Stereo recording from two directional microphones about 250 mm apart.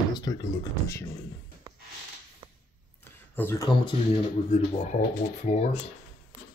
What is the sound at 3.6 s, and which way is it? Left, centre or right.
Speech, left.